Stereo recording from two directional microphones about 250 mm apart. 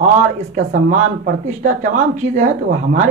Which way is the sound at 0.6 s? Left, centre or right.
Right.